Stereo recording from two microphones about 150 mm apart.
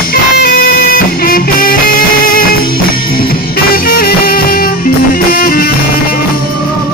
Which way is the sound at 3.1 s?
80° left.